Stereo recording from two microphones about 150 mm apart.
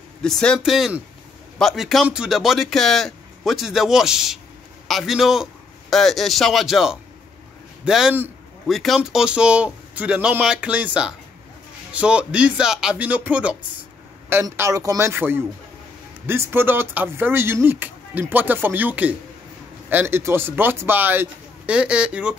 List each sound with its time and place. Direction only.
0.2 s a man's voice: 5° left (ahead or behind)
14.3 s speech: 20° right (ahead or behind)